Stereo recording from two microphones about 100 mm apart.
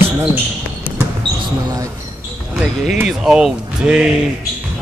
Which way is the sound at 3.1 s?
5° right (ahead or behind).